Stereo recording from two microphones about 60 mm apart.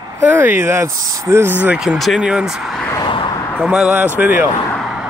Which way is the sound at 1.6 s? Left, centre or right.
Right.